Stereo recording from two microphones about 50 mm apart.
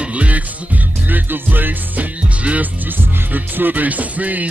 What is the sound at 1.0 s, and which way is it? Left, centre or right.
Music, right.